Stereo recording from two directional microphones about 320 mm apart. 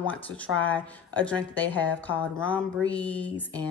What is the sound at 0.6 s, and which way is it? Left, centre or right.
A woman's voice, centre.